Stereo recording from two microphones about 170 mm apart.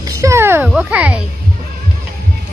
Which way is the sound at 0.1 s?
15° right (ahead or behind).